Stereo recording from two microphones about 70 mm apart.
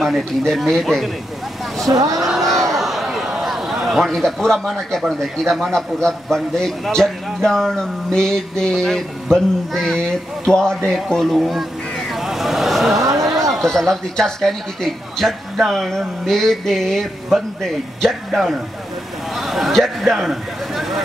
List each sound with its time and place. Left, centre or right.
0.0 s speech: centre
1.9 s speech: right
2.2 s a sound: centre
5.2 s a man's voice: centre
12.1 s a sound: centre
13.7 s a man's voice: centre